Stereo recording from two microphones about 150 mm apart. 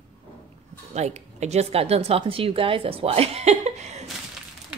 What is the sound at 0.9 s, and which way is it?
A woman's voice, 45° right (ahead or behind).